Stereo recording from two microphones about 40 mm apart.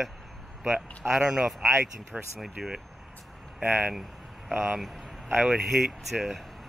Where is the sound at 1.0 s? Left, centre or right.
Centre.